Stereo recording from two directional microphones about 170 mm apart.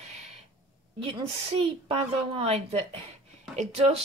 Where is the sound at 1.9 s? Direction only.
35° right (ahead or behind).